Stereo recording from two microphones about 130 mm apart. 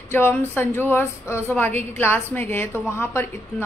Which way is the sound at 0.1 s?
15° left (ahead or behind).